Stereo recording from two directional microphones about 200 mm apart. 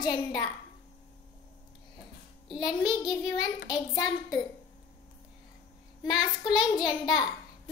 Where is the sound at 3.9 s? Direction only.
20° left (ahead or behind).